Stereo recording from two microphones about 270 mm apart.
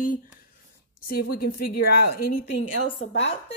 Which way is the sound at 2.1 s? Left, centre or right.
Left.